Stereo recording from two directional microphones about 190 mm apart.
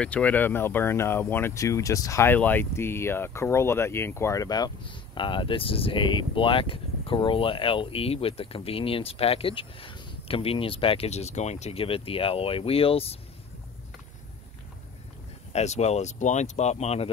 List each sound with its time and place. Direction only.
0.0 s speech: 5° left (ahead or behind); by 13.2 s 30° left (ahead or behind)
15.5 s speech: 35° left (ahead or behind)